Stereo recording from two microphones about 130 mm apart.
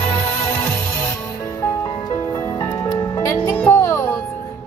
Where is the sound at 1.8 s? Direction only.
25° left (ahead or behind).